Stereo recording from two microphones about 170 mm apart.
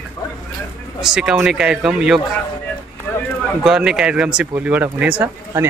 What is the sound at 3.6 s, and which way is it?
Speech, 5° right (ahead or behind).